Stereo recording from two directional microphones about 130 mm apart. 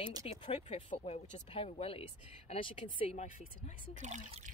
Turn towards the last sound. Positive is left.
turn(degrees=-65)  # may be behind; listen again after turning